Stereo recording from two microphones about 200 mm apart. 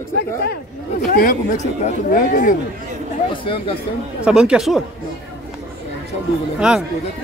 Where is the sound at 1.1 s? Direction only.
45° left (ahead or behind).